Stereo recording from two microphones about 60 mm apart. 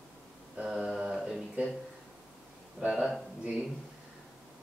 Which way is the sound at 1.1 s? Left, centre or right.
Centre.